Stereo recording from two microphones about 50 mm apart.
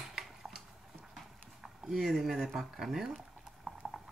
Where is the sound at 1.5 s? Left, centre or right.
Centre.